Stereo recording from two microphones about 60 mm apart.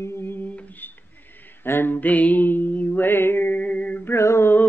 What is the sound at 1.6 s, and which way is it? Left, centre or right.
Mantra, left.